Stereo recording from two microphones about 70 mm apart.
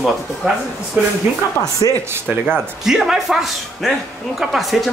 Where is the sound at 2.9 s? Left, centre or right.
Centre.